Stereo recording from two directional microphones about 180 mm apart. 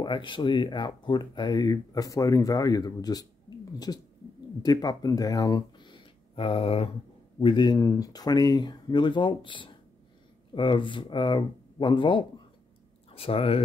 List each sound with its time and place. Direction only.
0.0 s speech: 25° left (ahead or behind)